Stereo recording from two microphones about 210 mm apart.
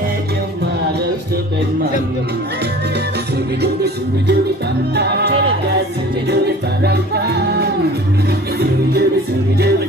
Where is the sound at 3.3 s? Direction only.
50° right (ahead or behind).